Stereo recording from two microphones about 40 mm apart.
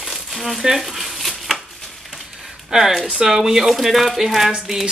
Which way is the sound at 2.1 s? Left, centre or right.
Centre.